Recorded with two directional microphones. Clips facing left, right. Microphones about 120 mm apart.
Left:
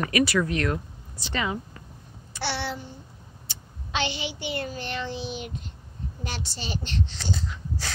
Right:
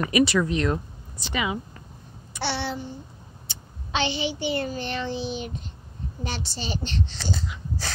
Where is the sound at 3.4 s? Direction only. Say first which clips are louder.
Even; 25° right (ahead or behind).